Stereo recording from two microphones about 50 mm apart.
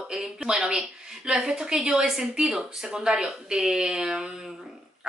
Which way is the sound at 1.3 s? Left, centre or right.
Centre.